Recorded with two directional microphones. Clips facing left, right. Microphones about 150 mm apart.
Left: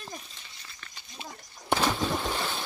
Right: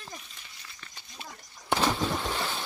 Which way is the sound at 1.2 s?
15° left (ahead or behind).